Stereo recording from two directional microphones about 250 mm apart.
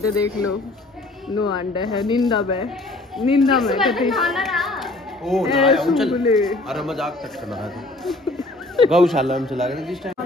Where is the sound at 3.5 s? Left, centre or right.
Centre.